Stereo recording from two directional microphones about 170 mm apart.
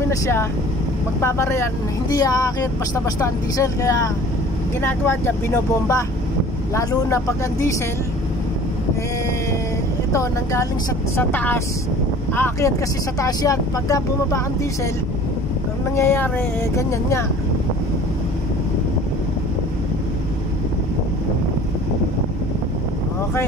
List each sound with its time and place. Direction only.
0.1 s speech: 15° left (ahead or behind)
10.1 s speech: 20° left (ahead or behind)
16.0 s speech: 15° left (ahead or behind)